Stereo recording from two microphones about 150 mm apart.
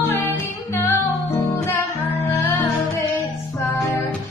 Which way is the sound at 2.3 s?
15° left (ahead or behind).